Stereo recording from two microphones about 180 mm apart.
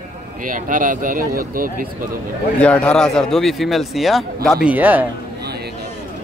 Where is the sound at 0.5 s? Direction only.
50° right (ahead or behind).